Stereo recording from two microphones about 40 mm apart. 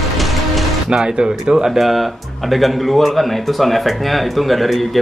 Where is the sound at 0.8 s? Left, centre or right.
Centre.